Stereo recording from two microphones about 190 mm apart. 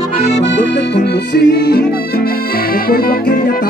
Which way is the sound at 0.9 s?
60° left (ahead or behind).